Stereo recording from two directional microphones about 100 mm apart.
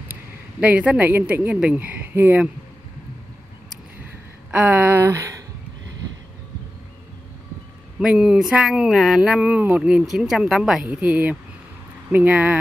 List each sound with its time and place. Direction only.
0.1 s speech: 15° right (ahead or behind)
4.0 s a sound: 15° right (ahead or behind); by 5.4 s 30° right (ahead or behind)
8.0 s speech: 5° right (ahead or behind)